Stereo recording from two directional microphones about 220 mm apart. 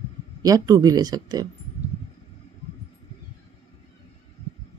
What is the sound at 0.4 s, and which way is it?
Speech, 15° right (ahead or behind).